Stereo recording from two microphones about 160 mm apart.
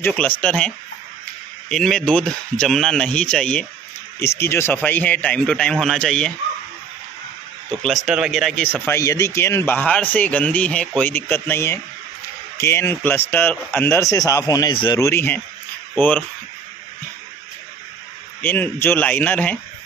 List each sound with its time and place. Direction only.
0.0 s a man's voice: 5° left (ahead or behind)
8.1 s speech: centre (ahead or behind)
8.8 s a man's voice: 20° left (ahead or behind)
15.0 s a man's voice: 15° left (ahead or behind)
18.4 s a man's voice: 15° left (ahead or behind)